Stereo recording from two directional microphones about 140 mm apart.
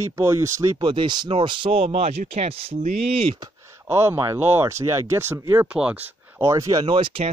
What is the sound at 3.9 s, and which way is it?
Speech, 15° right (ahead or behind).